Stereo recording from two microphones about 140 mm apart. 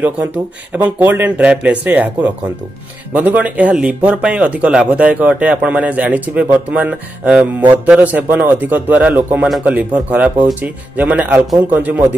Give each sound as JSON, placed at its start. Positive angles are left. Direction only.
{"t": 0.8, "sound": "speech", "side_deg": -10}